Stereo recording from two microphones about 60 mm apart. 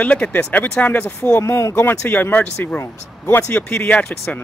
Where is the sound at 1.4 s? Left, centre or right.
Left.